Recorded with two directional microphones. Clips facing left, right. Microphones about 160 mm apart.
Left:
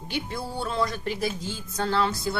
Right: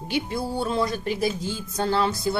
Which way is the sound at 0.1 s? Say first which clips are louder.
Right 5 dB; 15° right (ahead or behind).